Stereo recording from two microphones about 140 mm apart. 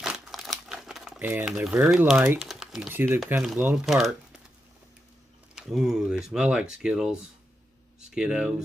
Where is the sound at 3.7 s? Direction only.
Centre (ahead or behind).